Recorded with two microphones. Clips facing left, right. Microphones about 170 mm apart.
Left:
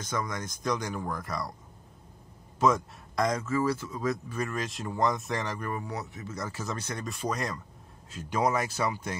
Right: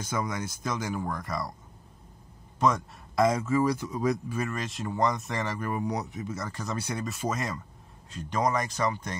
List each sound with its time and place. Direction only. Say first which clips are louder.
0.0 s speech: right 2 dB; 10° right (ahead or behind)
2.6 s speech: left 1 dB; centre (ahead or behind)
4.5 s speech: right 1 dB; centre (ahead or behind)
5.8 s speech: right 6 dB; 15° right (ahead or behind)
6.3 s speech: even; centre (ahead or behind)